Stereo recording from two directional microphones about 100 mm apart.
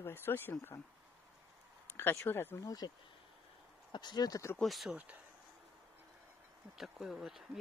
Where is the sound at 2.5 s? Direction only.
40° left (ahead or behind).